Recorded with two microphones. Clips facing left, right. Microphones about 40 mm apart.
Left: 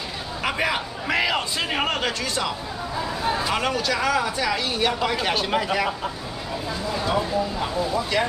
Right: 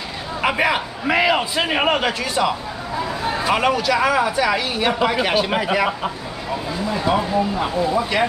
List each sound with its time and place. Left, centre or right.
0.4 s speech: centre